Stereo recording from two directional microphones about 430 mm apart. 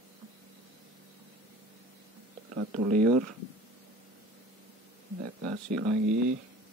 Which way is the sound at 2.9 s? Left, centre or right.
Centre.